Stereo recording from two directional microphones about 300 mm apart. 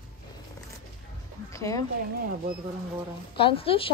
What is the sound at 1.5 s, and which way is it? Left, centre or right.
Speech, centre.